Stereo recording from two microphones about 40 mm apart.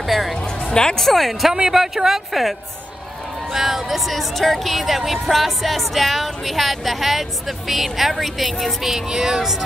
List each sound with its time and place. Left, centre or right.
0.0 s music: centre
0.4 s music: left
0.9 s speech: centre
1.5 s speech: centre
3.4 s speech: centre